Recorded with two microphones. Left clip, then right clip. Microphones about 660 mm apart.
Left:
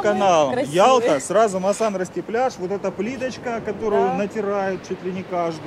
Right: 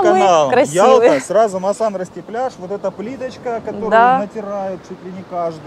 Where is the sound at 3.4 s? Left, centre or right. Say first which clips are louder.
Right 6 dB; right.